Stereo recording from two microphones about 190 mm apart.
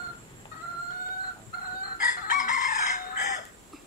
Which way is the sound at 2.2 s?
45° left (ahead or behind).